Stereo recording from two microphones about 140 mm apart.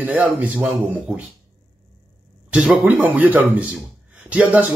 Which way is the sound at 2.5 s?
5° right (ahead or behind).